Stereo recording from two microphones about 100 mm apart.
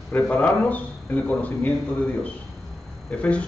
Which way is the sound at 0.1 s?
15° left (ahead or behind).